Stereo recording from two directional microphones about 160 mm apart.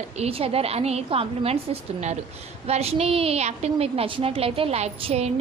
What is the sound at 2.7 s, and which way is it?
A woman's voice, 40° right (ahead or behind).